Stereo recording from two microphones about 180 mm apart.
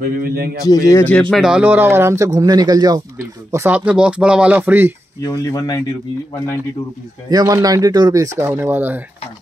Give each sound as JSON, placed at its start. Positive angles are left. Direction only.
{"t": 0.0, "sound": "a man's voice", "side_deg": -55}
{"t": 0.7, "sound": "speech", "side_deg": 20}
{"t": 1.3, "sound": "speech", "side_deg": -5}
{"t": 3.5, "sound": "speech", "side_deg": -10}
{"t": 5.2, "sound": "speech", "side_deg": 20}
{"t": 7.2, "sound": "speech", "side_deg": -20}